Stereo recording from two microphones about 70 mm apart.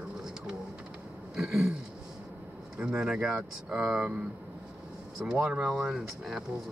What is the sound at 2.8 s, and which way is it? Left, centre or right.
Speech, centre.